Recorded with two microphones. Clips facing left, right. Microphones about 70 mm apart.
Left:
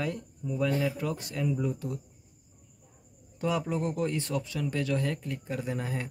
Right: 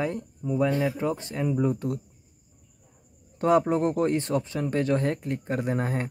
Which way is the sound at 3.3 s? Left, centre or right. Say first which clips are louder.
Right 8 dB; right.